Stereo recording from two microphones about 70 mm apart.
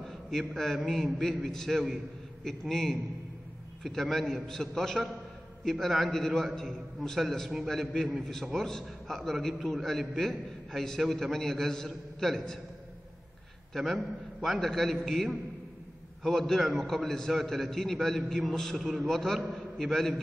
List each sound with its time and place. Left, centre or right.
0.0 s a sound: centre
0.8 s a man's voice: centre
13.7 s a man's voice: centre